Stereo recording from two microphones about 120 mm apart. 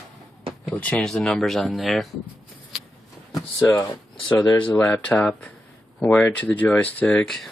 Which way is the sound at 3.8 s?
35° left (ahead or behind).